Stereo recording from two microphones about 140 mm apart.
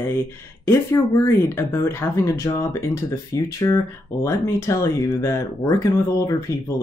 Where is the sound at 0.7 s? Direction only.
20° left (ahead or behind).